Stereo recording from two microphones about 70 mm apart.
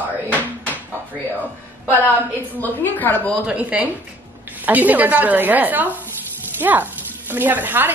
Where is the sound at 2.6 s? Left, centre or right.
Left.